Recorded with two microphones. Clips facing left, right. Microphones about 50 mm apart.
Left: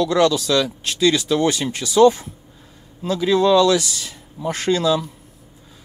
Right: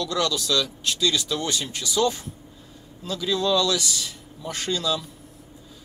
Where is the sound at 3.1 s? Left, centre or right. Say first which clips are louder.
Left 8 dB; left.